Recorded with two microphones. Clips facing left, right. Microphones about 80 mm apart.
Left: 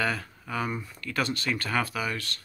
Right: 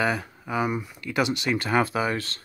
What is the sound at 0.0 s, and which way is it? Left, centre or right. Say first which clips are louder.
Speech: right 4 dB; centre.